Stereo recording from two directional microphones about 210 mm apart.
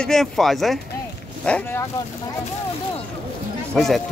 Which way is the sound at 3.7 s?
Centre (ahead or behind).